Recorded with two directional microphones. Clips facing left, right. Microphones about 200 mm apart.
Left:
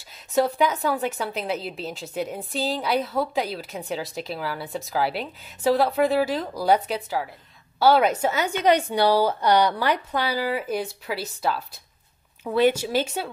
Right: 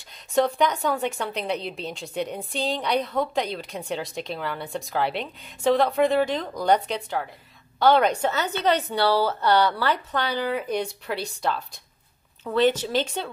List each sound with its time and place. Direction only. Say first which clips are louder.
0.3 s a woman's voice: even; 5° left (ahead or behind)